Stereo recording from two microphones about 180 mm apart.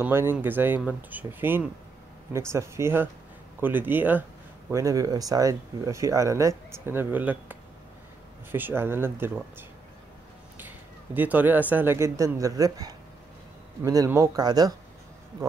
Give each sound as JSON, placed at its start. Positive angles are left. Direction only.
{"t": 0.0, "sound": "speech", "side_deg": -10}
{"t": 11.1, "sound": "speech", "side_deg": -10}